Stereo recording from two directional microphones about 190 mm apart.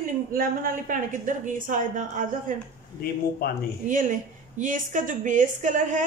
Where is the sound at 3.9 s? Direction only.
45° right (ahead or behind).